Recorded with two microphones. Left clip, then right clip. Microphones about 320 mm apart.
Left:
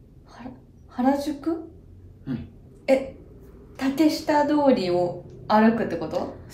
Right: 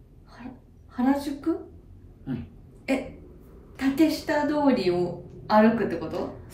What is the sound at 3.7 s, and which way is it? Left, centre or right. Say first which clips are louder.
A woman's voice: left 1 dB; centre.